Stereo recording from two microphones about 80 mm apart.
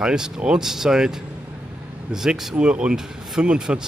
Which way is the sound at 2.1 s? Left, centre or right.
Centre.